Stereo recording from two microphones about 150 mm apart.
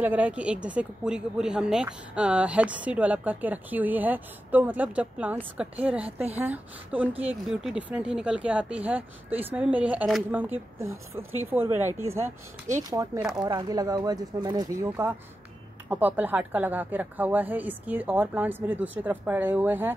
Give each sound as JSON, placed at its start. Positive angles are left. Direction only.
{"t": 0.0, "sound": "speech", "side_deg": -10}